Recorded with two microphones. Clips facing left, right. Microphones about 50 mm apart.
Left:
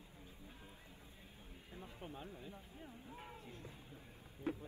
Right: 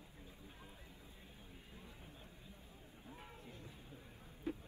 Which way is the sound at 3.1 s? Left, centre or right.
Centre.